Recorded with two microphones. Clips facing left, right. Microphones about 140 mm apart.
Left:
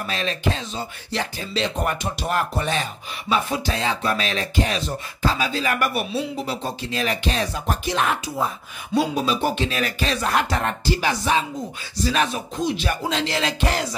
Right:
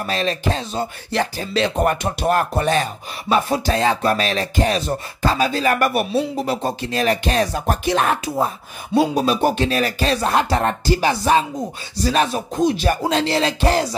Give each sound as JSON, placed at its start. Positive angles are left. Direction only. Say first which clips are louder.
{"t": 0.1, "sound": "speech", "louder": "right 4 dB", "side_deg": -40}
{"t": 1.1, "sound": "speech", "louder": "right 5 dB", "side_deg": -55}